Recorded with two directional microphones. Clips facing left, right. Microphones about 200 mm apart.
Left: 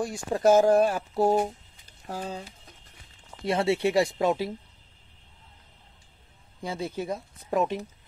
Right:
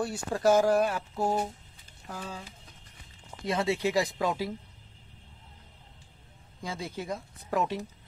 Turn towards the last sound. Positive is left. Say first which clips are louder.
# left 3 dB
turn(degrees=20)  # may be behind; listen again after turning